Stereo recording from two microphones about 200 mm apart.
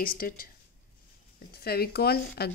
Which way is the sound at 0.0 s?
45° left (ahead or behind).